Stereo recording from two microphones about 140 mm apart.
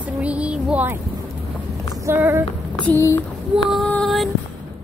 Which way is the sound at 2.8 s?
20° left (ahead or behind).